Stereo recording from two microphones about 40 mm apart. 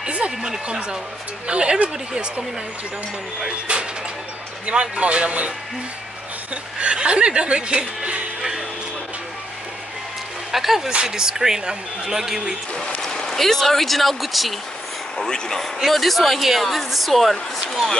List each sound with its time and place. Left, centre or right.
0.0 s a sound: right
0.7 s speech: right
4.6 s speech: right
6.5 s speech: right
10.5 s speech: centre
13.0 s speech: centre
15.1 s speech: centre
15.9 s speech: centre